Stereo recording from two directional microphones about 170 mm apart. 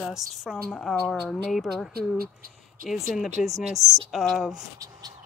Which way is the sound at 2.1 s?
60° right (ahead or behind).